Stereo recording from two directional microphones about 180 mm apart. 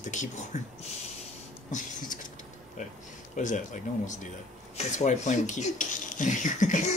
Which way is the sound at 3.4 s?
45° left (ahead or behind).